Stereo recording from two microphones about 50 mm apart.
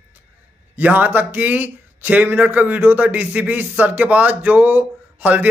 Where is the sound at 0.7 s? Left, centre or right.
Right.